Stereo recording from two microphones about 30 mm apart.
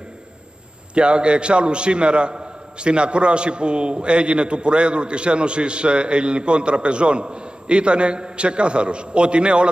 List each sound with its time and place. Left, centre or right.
0.9 s a man's voice: right